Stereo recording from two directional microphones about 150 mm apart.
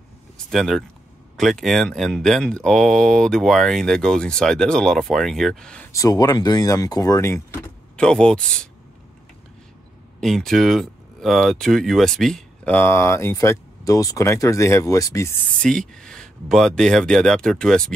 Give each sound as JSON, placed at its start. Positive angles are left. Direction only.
{"t": 0.5, "sound": "speech", "side_deg": 0}
{"t": 5.9, "sound": "speech", "side_deg": 25}
{"t": 7.9, "sound": "speech", "side_deg": 5}
{"t": 10.2, "sound": "speech", "side_deg": 0}
{"t": 15.9, "sound": "speech", "side_deg": 5}